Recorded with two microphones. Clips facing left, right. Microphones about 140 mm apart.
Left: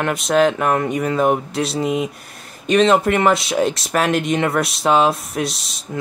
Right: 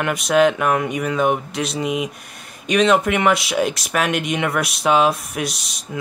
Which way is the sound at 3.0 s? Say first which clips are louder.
Left 2 dB; 30° left (ahead or behind).